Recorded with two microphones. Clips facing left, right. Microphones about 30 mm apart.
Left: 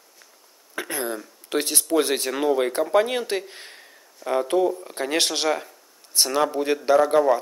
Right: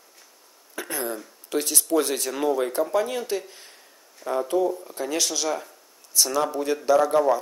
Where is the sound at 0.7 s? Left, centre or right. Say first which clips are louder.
Left 2 dB; left.